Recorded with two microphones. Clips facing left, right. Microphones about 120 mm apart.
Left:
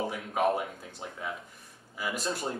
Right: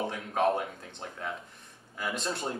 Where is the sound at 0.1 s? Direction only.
5° left (ahead or behind).